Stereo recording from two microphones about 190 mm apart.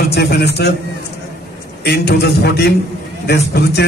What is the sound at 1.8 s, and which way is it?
A man's voice, 60° left (ahead or behind).